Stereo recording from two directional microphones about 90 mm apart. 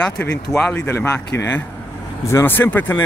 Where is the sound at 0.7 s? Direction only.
25° left (ahead or behind).